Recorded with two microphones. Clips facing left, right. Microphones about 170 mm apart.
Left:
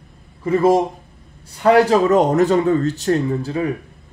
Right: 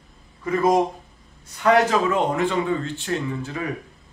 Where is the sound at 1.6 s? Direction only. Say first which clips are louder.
Left 5 dB; 35° left (ahead or behind).